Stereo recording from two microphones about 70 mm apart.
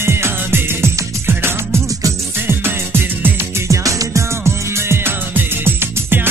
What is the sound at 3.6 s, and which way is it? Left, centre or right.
Music, right.